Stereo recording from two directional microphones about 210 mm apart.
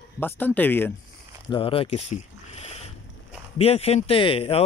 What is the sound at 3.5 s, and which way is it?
A man's voice, 30° left (ahead or behind).